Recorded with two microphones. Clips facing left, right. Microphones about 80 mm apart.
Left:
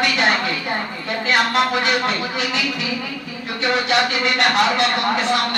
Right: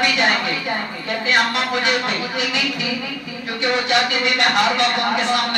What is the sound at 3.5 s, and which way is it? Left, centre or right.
Music, left.